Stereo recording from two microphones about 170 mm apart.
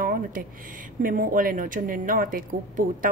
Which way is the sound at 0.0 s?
55° right (ahead or behind).